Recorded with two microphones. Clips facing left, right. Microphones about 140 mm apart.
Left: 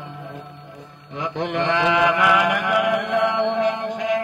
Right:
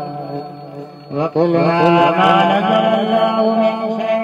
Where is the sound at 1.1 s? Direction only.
30° right (ahead or behind).